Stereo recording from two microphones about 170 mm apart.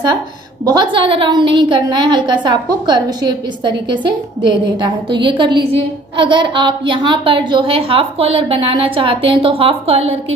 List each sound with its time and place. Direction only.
0.7 s a woman's voice: 25° right (ahead or behind)